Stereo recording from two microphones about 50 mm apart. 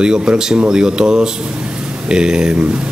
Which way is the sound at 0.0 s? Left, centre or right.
Centre.